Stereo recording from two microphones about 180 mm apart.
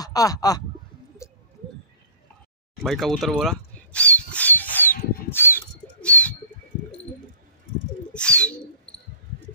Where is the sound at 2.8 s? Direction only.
Centre (ahead or behind).